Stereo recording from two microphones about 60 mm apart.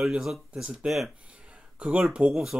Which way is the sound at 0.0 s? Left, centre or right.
Centre.